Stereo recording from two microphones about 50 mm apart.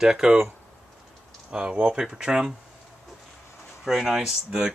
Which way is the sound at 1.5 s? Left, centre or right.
Centre.